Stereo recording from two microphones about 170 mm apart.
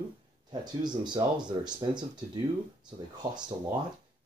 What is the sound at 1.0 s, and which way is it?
Speech, 25° right (ahead or behind).